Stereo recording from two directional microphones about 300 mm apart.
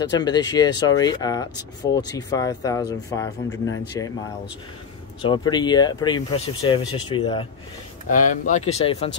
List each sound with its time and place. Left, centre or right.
0.2 s speech: centre
3.4 s speech: left
5.2 s speech: centre